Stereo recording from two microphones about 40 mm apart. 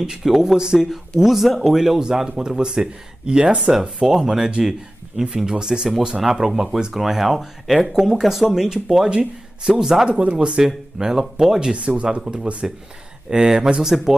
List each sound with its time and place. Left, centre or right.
0.2 s speech: centre
0.6 s speech: centre
1.2 s speech: centre
9.1 s speech: right
10.0 s speech: right
10.6 s speech: centre
11.7 s speech: right
12.6 s speech: centre